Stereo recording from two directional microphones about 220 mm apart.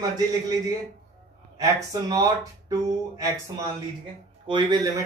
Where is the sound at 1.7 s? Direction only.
15° right (ahead or behind).